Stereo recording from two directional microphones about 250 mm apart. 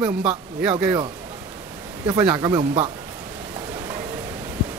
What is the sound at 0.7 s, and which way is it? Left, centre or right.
Speech, centre.